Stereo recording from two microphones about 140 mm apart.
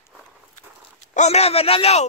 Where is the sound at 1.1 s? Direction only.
55° left (ahead or behind).